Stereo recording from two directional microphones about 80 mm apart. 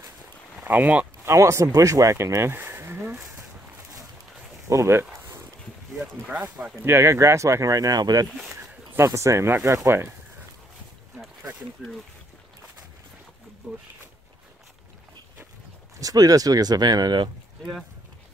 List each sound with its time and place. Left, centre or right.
0.6 s speech: centre
1.2 s speech: right
4.6 s speech: right
5.9 s speech: centre
6.8 s speech: right
8.5 s a sound: right
9.7 s speech: right
16.0 s speech: right